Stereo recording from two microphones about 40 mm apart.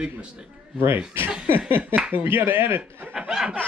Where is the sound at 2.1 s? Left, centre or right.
Right.